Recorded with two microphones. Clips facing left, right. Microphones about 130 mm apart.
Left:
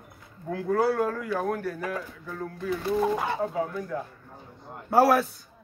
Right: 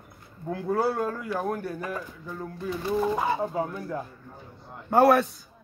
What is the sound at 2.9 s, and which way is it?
Speech, 5° right (ahead or behind).